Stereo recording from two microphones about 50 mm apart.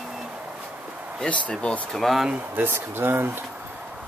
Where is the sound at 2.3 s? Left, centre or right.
Right.